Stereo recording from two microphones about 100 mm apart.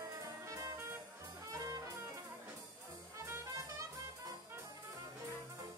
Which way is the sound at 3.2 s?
25° right (ahead or behind).